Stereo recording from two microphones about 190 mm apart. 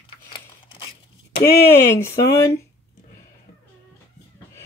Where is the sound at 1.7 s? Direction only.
15° left (ahead or behind).